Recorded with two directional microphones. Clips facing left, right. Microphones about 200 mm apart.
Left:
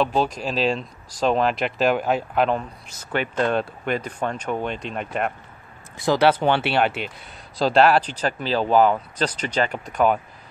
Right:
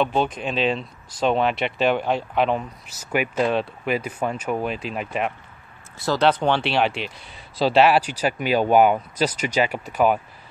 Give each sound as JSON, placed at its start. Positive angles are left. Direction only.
{"t": 0.2, "sound": "speech", "side_deg": 35}
{"t": 0.5, "sound": "speech", "side_deg": 0}
{"t": 5.9, "sound": "speech", "side_deg": 15}